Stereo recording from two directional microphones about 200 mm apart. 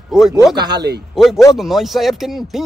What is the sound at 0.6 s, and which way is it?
Speech, 20° right (ahead or behind).